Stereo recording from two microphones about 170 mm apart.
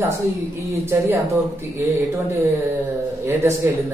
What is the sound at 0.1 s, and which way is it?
A man's voice, 15° right (ahead or behind).